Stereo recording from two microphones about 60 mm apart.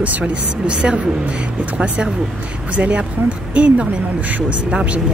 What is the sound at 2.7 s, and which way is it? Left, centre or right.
Speech, right.